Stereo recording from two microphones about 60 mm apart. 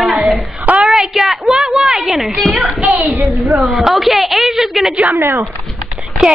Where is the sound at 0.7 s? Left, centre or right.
Right.